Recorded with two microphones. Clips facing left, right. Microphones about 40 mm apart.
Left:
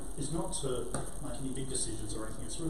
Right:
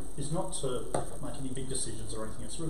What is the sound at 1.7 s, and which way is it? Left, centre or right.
Speech, centre.